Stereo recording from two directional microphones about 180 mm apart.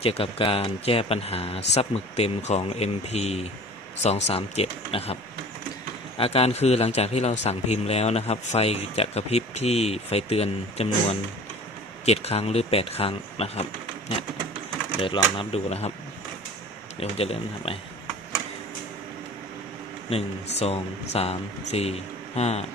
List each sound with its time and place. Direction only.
0.0 s a man's voice: 30° left (ahead or behind)
15.0 s a man's voice: 30° left (ahead or behind)
17.0 s a man's voice: 35° left (ahead or behind)
20.1 s a man's voice: 35° left (ahead or behind)